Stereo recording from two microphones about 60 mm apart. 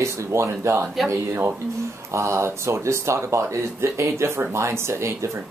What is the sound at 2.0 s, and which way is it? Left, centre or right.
Speech, right.